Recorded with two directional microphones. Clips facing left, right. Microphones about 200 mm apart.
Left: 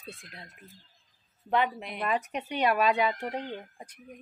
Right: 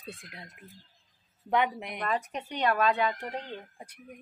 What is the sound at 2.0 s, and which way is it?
Speech, 10° left (ahead or behind).